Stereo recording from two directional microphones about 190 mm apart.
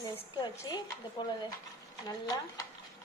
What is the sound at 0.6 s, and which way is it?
Speech, 25° left (ahead or behind).